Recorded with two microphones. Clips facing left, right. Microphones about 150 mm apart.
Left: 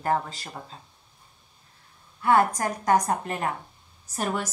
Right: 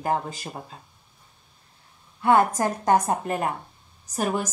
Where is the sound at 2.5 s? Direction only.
25° right (ahead or behind).